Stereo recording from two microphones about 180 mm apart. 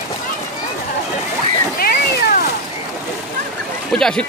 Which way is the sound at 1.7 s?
55° left (ahead or behind).